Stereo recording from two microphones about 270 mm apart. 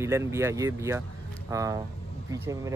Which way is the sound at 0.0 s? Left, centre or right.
Centre.